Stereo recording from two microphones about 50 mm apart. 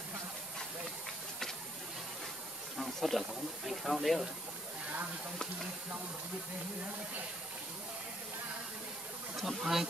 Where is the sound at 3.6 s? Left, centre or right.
Centre.